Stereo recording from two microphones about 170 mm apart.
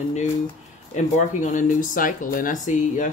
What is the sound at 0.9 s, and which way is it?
Speech, 45° left (ahead or behind).